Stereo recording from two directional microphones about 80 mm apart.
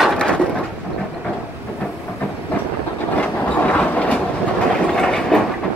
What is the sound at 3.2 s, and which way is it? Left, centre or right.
Train, centre.